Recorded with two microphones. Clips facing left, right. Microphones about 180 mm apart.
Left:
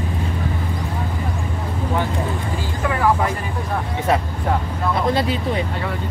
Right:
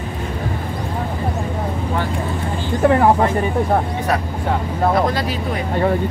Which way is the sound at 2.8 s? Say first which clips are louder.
Right 8 dB; 30° right (ahead or behind).